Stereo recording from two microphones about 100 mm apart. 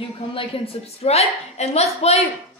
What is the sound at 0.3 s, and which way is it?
A woman's voice, 60° left (ahead or behind).